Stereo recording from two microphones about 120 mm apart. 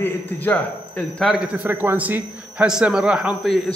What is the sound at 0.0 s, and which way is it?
A man's voice, 15° left (ahead or behind).